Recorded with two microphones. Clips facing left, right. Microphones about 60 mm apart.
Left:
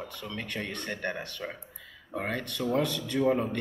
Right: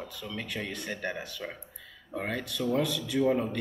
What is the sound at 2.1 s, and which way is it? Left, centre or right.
Speech, centre.